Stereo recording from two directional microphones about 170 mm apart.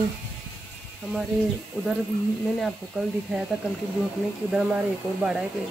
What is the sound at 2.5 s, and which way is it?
Speech, centre (ahead or behind).